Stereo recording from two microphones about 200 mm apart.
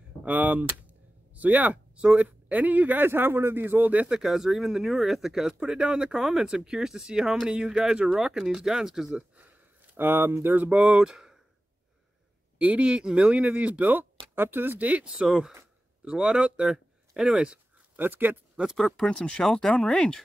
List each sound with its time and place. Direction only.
0.2 s speech: 10° right (ahead or behind)
12.5 s speech: 5° right (ahead or behind)